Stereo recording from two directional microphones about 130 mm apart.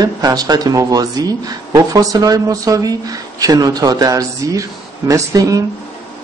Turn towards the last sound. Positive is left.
turn(degrees=-25)  # may be behind; listen again after turning